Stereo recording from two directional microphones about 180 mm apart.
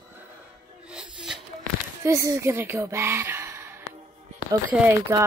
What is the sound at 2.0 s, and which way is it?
Speech, 15° right (ahead or behind).